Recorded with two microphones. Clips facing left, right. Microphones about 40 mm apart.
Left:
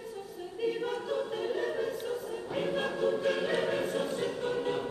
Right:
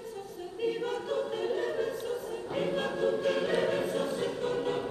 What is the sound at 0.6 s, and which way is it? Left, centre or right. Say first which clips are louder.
Choir: even; centre.